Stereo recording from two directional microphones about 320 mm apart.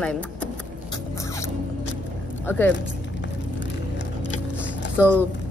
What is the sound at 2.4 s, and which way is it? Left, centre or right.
Speech, centre.